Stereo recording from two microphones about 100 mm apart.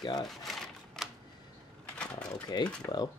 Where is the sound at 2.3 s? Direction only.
40° left (ahead or behind).